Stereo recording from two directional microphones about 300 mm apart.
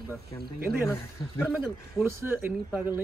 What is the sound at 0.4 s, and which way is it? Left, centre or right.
Speech, right.